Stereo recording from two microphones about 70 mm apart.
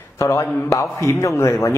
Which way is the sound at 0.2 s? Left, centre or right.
Left.